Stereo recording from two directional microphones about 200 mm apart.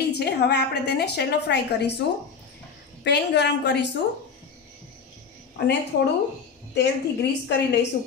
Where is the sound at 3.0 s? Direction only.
60° left (ahead or behind).